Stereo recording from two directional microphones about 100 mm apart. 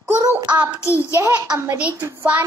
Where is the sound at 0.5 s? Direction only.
45° right (ahead or behind).